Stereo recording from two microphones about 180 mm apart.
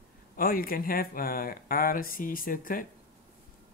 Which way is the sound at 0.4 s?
55° left (ahead or behind).